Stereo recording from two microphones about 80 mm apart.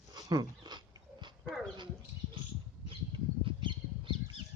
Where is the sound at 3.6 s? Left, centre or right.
Right.